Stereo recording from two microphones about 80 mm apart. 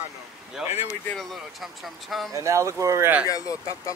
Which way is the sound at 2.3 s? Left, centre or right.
Right.